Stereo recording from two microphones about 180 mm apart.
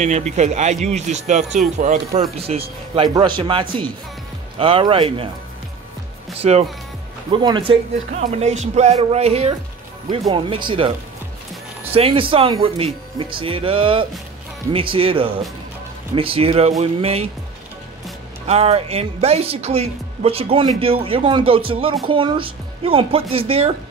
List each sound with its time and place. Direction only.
0.4 s speech: 40° right (ahead or behind)
2.4 s speech: 30° right (ahead or behind)
6.4 s speech: 35° right (ahead or behind)
7.2 s speech: 25° right (ahead or behind)
11.9 s speech: 30° right (ahead or behind)
18.5 s speech: 35° right (ahead or behind)